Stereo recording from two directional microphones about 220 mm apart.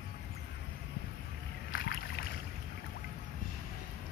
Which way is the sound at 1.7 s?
45° left (ahead or behind).